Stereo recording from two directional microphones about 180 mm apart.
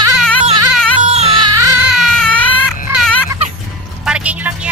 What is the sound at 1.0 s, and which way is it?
Music, 35° right (ahead or behind).